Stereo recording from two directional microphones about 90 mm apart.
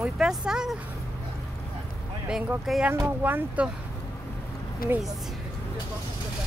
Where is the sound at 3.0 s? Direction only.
20° right (ahead or behind).